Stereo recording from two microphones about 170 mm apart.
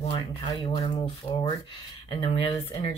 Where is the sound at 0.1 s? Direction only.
30° left (ahead or behind).